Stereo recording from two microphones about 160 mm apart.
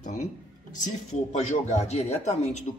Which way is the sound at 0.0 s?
50° left (ahead or behind).